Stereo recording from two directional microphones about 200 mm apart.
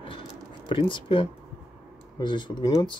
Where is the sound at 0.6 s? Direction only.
25° left (ahead or behind).